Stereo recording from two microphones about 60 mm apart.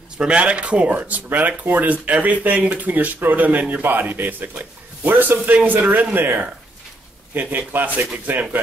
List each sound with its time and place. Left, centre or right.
0.2 s speech: centre